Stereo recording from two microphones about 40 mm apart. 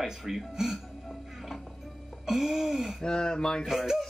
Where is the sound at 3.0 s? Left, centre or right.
Centre.